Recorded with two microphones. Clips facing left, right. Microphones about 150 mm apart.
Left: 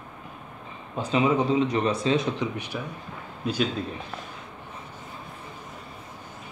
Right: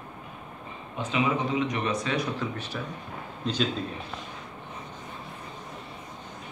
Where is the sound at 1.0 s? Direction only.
35° left (ahead or behind); by 3.7 s 10° left (ahead or behind).